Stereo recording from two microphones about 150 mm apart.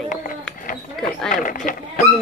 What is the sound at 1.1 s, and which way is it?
Speech, 5° left (ahead or behind).